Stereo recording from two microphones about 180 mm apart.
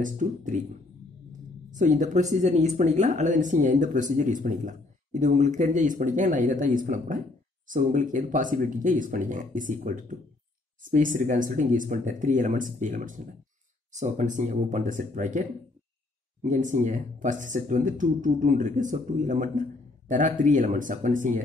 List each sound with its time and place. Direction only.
0.0 s speech: 45° right (ahead or behind)
1.7 s speech: 45° right (ahead or behind)
11.1 s speech: 45° right (ahead or behind)
16.4 s speech: 45° right (ahead or behind)